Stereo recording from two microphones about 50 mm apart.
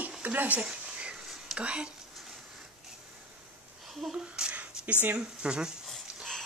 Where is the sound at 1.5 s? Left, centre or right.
Right.